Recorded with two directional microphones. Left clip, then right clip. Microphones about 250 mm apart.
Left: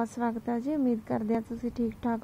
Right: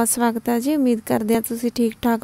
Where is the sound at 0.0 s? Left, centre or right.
Right.